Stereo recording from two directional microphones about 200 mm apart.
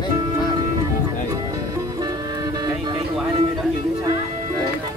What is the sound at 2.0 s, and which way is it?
Music, 20° right (ahead or behind).